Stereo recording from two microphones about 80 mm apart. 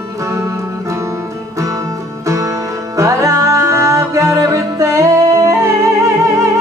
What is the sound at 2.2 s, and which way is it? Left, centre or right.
Music, right.